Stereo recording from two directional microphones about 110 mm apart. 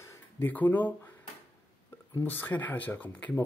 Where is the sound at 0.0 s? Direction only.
25° left (ahead or behind).